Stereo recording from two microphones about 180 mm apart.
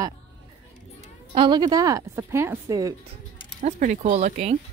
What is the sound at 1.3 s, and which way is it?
Speech, 25° right (ahead or behind).